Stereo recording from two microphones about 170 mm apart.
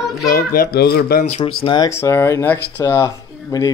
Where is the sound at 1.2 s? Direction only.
35° left (ahead or behind).